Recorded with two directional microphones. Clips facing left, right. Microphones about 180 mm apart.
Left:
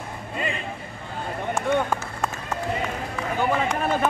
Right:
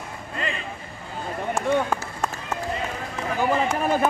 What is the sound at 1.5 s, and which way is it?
Run, 5° right (ahead or behind).